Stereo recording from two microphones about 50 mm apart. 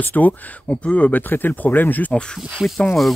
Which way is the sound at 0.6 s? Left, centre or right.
Left.